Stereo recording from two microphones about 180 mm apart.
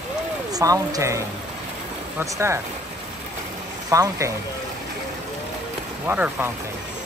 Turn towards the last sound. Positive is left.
turn(degrees=-10)  # may be behind; listen again after turning